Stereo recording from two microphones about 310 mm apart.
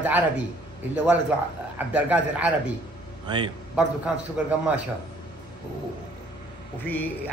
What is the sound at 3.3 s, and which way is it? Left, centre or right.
Speech, centre.